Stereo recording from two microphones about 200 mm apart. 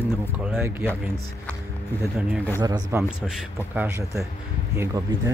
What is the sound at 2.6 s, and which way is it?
Speech, 20° right (ahead or behind).